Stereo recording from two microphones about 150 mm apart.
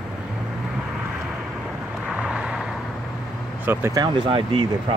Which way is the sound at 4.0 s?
30° right (ahead or behind).